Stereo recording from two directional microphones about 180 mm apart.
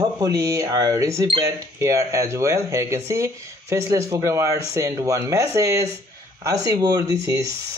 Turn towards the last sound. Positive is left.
turn(degrees=-15)  # may be behind; listen again after turning